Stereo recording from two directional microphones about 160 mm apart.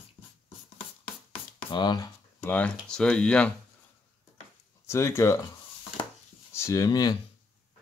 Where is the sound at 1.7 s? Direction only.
30° left (ahead or behind).